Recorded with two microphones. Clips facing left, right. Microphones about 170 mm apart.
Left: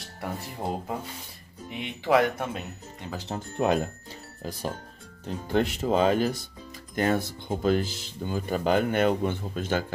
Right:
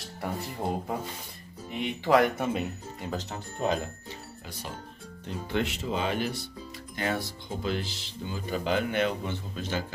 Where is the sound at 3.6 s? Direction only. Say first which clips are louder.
Left 4 dB; 65° left (ahead or behind).